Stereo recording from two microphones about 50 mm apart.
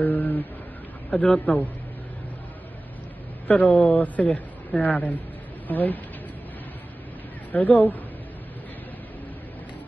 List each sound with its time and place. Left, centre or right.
0.0 s a sound: left
1.1 s a man's voice: left
3.4 s speech: left
7.5 s speech: left